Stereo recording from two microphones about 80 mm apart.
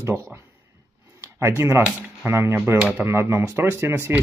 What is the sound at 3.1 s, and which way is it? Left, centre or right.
Speech, right.